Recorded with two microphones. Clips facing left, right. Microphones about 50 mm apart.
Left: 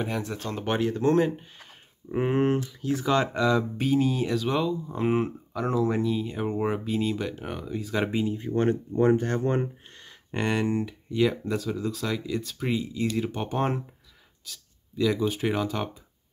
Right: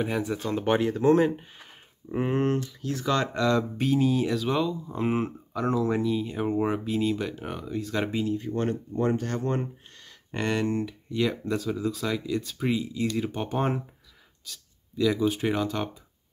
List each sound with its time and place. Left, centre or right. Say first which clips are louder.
0.0 s speech: right 3 dB; centre
2.0 s speech: left 2 dB; centre
8.1 s speech: left 1 dB; centre
10.3 s speech: left 1 dB; centre